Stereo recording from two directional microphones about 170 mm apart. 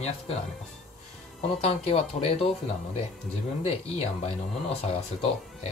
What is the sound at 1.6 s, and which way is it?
Speech, 35° left (ahead or behind).